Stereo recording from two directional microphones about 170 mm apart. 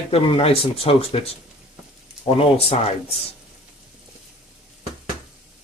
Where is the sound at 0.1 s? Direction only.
35° left (ahead or behind).